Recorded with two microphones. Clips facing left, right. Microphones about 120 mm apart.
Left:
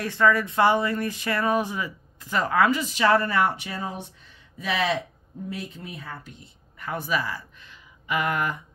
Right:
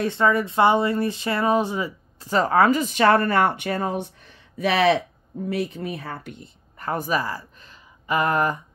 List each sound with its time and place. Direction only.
0.0 s speech: 25° right (ahead or behind); by 6.5 s 60° right (ahead or behind)
6.8 s speech: 40° right (ahead or behind)